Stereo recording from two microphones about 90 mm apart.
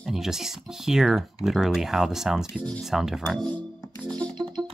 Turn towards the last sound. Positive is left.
turn(degrees=15)  # may be behind; listen again after turning